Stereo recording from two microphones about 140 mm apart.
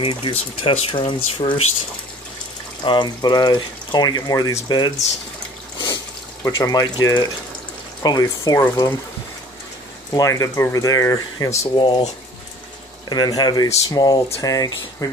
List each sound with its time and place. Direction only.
0.0 s speech: 40° left (ahead or behind)
2.8 s speech: 35° left (ahead or behind)
6.4 s speech: 25° left (ahead or behind)
10.1 s speech: 25° left (ahead or behind)
11.7 s speech: 35° left (ahead or behind)
13.1 s speech: 30° left (ahead or behind)